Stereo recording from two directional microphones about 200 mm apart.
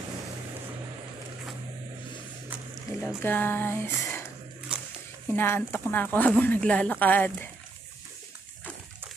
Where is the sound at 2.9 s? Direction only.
15° left (ahead or behind).